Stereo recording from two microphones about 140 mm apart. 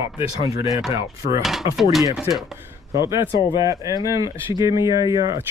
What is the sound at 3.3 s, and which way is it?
Speech, 35° left (ahead or behind).